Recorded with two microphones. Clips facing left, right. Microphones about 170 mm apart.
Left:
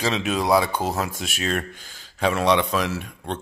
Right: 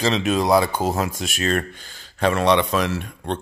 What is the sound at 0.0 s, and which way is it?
Speech, 5° left (ahead or behind).